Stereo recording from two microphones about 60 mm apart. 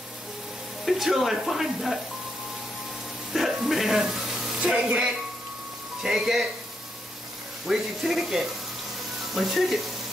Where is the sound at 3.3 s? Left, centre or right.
Centre.